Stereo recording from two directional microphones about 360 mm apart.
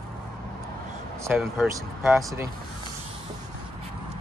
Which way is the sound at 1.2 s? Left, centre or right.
Centre.